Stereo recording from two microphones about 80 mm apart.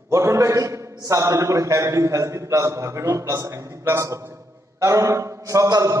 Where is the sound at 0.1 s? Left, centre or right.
Right.